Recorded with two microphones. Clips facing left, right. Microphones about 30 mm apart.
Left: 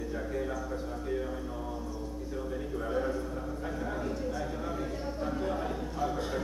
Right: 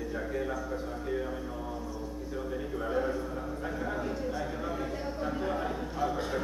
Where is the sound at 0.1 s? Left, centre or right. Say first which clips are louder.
Right 1 dB; centre.